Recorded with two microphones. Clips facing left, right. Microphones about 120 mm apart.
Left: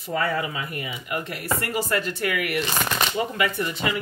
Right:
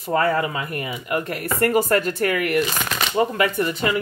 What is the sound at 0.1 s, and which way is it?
Speech, 45° right (ahead or behind).